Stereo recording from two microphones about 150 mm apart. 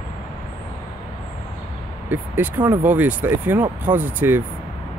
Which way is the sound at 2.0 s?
15° right (ahead or behind).